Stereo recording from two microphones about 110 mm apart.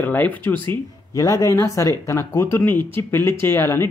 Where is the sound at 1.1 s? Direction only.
30° left (ahead or behind).